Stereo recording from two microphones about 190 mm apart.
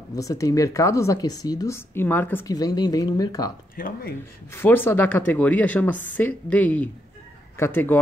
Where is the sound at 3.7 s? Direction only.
45° left (ahead or behind).